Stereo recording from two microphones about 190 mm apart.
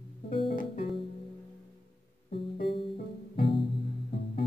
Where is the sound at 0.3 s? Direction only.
30° left (ahead or behind).